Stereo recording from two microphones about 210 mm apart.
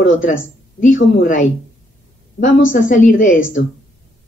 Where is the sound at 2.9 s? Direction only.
40° left (ahead or behind).